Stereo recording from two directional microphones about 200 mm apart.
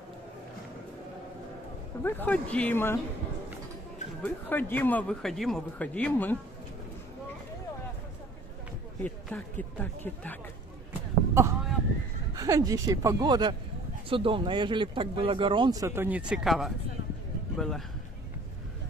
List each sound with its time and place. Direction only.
2.0 s speech: 10° left (ahead or behind)
4.2 s speech: 10° left (ahead or behind)
9.0 s speech: 10° left (ahead or behind)
10.9 s a sound: 15° right (ahead or behind)
12.4 s a man's voice: 15° right (ahead or behind); by 17.8 s centre (ahead or behind)